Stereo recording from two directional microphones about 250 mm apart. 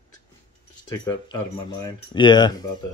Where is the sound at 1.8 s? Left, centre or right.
Centre.